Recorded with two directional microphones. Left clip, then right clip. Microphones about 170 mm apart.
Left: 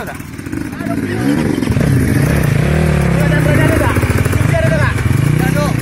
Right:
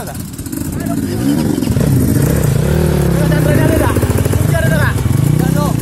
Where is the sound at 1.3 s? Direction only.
50° right (ahead or behind).